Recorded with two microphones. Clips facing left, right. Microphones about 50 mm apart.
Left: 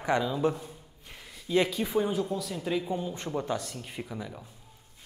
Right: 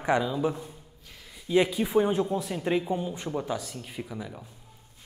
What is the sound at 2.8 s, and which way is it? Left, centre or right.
Speech, centre.